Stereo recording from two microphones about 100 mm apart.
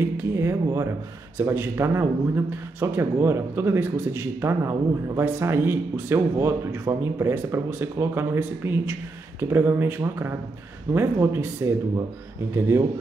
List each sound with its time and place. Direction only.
0.0 s speech: 25° right (ahead or behind)